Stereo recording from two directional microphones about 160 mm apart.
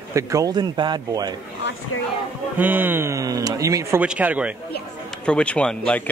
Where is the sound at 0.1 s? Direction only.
20° right (ahead or behind).